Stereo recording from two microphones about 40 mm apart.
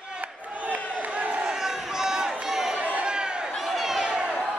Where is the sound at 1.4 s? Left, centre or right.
Centre.